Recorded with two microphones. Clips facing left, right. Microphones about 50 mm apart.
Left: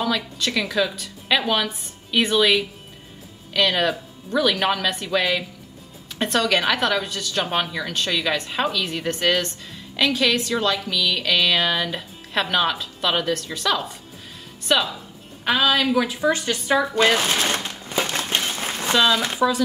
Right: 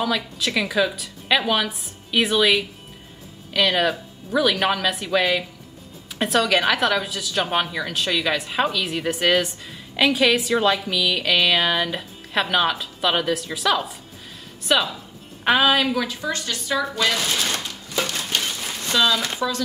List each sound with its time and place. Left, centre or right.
0.0 s a woman's voice: centre
15.4 s a woman's voice: centre
15.9 s speech: centre; by 17.6 s left
17.6 s a sound: left
18.8 s speech: centre